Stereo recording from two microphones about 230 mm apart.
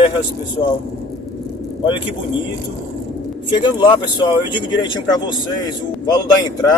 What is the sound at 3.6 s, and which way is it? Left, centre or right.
Speech, left.